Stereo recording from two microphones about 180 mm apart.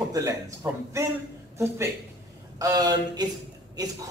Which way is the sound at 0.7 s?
20° right (ahead or behind).